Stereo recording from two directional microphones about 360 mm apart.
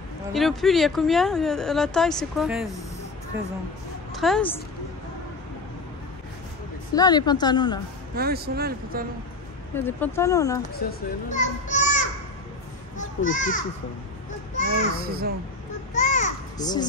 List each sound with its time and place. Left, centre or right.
0.3 s speech: centre
4.1 s a woman's voice: centre
6.9 s a woman's voice: centre
8.2 s speech: right
9.8 s a woman's voice: centre
10.7 s a child's voice: left
15.0 s speech: right
15.9 s children playing: left